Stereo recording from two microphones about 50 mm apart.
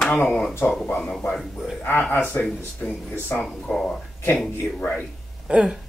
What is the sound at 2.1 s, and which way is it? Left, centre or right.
Speech, left.